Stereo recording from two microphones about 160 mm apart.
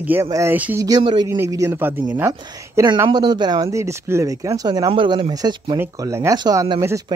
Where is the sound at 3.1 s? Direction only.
25° right (ahead or behind).